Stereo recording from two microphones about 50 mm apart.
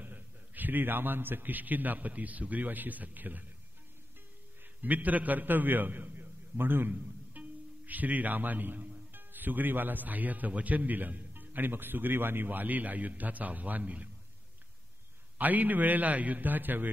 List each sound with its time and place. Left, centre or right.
0.0 s a man's voice: right
4.8 s a man's voice: right
6.9 s a man's voice: right
15.3 s a man's voice: right